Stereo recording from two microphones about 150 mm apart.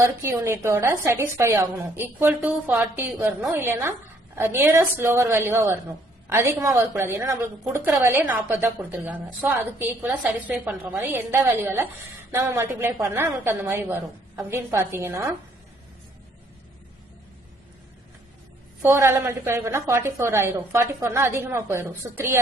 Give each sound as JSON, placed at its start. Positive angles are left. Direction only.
{"t": 0.2, "sound": "a woman's voice", "side_deg": -15}
{"t": 11.0, "sound": "a woman's voice", "side_deg": -15}
{"t": 18.8, "sound": "a woman's voice", "side_deg": -15}